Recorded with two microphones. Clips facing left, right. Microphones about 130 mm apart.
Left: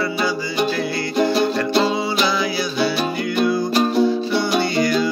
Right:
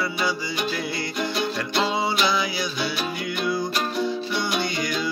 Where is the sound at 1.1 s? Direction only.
30° left (ahead or behind).